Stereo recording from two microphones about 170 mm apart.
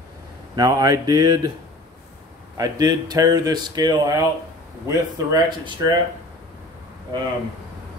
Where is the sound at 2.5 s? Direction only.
20° right (ahead or behind).